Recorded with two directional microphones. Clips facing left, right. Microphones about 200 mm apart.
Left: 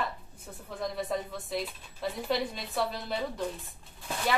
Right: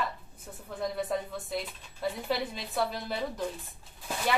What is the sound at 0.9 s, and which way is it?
Speech, centre (ahead or behind).